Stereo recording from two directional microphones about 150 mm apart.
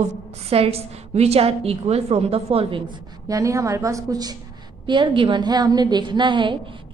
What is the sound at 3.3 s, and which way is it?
A woman's voice, 20° right (ahead or behind).